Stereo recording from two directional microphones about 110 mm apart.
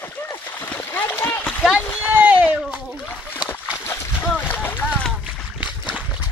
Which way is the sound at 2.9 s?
10° left (ahead or behind).